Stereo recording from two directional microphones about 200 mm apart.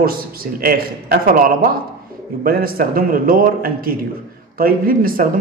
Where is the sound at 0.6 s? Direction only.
45° right (ahead or behind).